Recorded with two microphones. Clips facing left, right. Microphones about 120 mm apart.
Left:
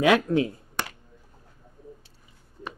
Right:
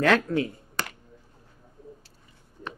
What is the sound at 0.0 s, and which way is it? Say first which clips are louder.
Speech: left 2 dB; 15° left (ahead or behind).